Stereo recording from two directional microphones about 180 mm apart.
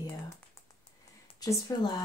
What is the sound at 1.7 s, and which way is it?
Speech, 20° left (ahead or behind).